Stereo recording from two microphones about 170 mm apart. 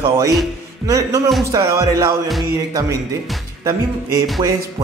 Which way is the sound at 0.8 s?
15° right (ahead or behind).